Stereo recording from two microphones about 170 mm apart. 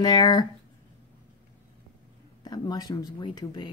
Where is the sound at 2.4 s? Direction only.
25° left (ahead or behind).